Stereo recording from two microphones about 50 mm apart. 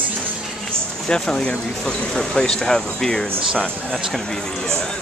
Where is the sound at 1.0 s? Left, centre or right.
Centre.